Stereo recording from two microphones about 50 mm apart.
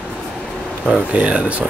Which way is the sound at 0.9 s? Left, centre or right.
Right.